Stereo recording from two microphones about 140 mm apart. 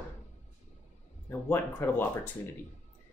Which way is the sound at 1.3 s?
15° left (ahead or behind).